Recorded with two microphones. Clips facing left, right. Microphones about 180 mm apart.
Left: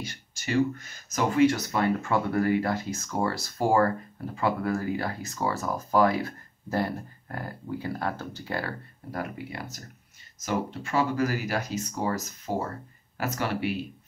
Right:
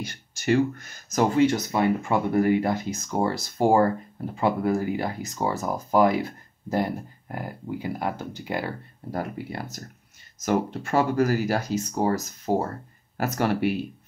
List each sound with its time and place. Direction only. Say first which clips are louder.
1.1 s speech: right 2 dB; 25° right (ahead or behind)
9.1 s speech: right 3 dB; 40° right (ahead or behind)